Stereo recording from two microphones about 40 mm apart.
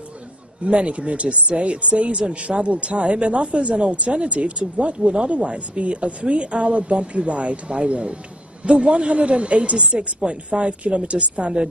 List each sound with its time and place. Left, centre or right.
0.7 s speech: right